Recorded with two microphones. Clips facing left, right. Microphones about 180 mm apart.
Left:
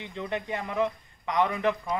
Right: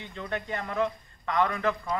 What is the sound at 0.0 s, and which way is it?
A man's voice, 20° left (ahead or behind).